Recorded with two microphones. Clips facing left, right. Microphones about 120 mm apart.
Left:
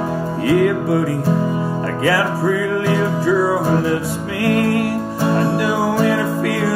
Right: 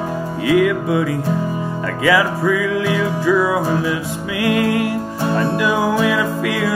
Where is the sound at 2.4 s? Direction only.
45° left (ahead or behind).